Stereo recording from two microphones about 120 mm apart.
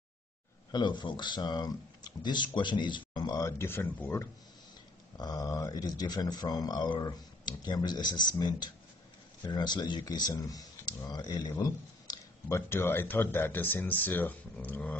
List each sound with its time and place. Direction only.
0.7 s speech: 35° left (ahead or behind); by 4.3 s 20° left (ahead or behind)
5.1 s speech: 35° left (ahead or behind)
12.4 s speech: 20° left (ahead or behind)